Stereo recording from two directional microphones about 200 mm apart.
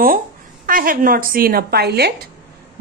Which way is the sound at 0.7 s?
45° right (ahead or behind).